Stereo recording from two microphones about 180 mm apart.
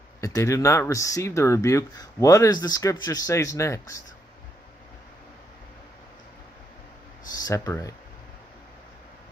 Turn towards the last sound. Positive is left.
turn(degrees=20)  # may be behind; listen again after turning